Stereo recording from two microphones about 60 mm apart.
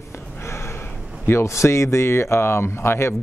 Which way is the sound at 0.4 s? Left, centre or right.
Left.